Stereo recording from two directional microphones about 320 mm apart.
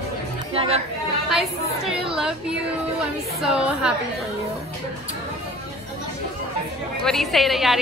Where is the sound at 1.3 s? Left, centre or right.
Centre.